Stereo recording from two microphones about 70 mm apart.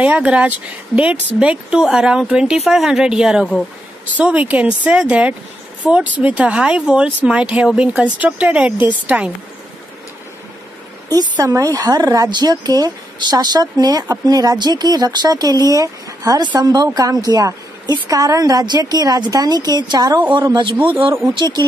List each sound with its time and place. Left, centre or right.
0.0 s speech: right
4.1 s speech: right
11.3 s a woman's voice: right
16.3 s a woman's voice: right
20.7 s speech: right
21.4 s speech: right